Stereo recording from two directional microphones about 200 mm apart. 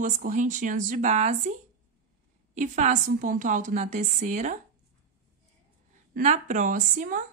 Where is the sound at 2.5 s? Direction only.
40° right (ahead or behind).